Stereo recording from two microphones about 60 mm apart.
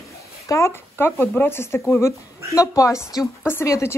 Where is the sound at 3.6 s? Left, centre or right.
Left.